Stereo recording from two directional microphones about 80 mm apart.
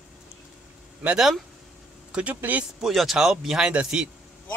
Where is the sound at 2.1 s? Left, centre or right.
Centre.